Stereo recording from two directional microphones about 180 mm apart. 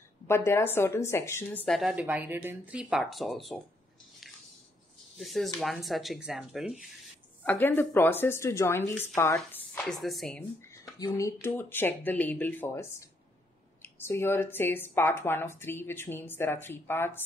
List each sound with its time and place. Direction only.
0.3 s speech: 15° left (ahead or behind)
1.8 s speech: 5° right (ahead or behind)
5.1 s speech: centre (ahead or behind)
7.4 s speech: 10° left (ahead or behind)
9.8 s speech: centre (ahead or behind)
10.7 s a sound: 15° left (ahead or behind)
11.4 s speech: 10° left (ahead or behind)
13.8 s speech: 15° left (ahead or behind)